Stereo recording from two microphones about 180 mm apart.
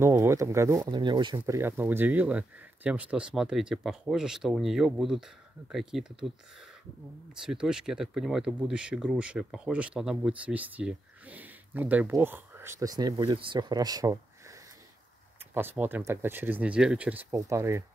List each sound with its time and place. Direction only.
0.0 s speech: 15° right (ahead or behind)
1.4 s speech: 10° right (ahead or behind)
7.4 s speech: 5° right (ahead or behind); by 14.1 s 20° right (ahead or behind)
15.5 s speech: 10° right (ahead or behind)